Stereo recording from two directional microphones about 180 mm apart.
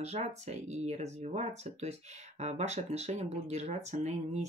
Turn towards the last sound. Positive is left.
turn(degrees=-40)  # may be behind; listen again after turning